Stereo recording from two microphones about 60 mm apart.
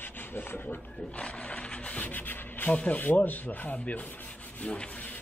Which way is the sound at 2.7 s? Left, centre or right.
Centre.